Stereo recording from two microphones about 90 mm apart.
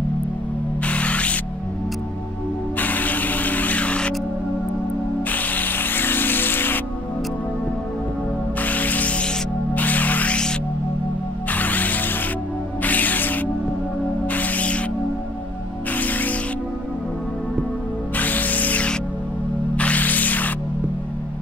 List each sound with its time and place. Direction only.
0.8 s spray: 15° left (ahead or behind)
2.8 s music: 20° left (ahead or behind)
5.3 s music: 20° left (ahead or behind)
8.5 s music: 20° left (ahead or behind)
11.5 s music: 20° left (ahead or behind)
16.0 s music: 20° left (ahead or behind)
18.1 s music: 20° left (ahead or behind)